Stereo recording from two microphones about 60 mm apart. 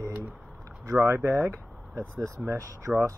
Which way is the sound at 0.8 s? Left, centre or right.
Right.